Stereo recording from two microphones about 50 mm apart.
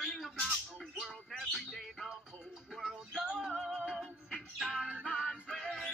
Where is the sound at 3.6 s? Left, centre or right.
Centre.